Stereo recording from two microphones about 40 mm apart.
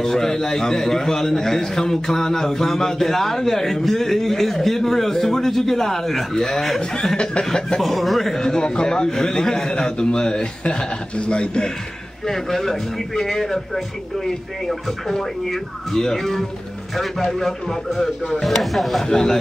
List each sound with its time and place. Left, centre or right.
0.0 s a man's voice: centre
7.4 s a man's voice: centre
7.8 s a man's voice: centre; by 11.7 s left
12.3 s a man's voice: centre
18.4 s chopping: centre
19.0 s a man's voice: centre